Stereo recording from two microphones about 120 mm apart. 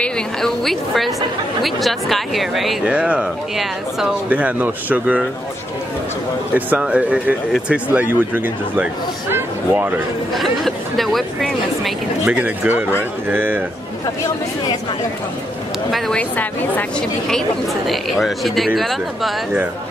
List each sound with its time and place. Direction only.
0.0 s speech: 5° left (ahead or behind)
6.5 s speech: 10° right (ahead or behind)
9.3 s a sound: 15° right (ahead or behind)
10.3 s speech: centre (ahead or behind)
12.3 s speech: 10° right (ahead or behind)
15.9 s a woman's voice: 10° left (ahead or behind)
17.8 s speech: centre (ahead or behind)